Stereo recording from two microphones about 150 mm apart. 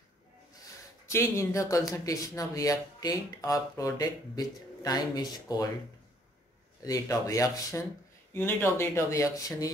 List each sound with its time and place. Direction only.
1.0 s speech: 20° left (ahead or behind)
6.8 s speech: 20° left (ahead or behind)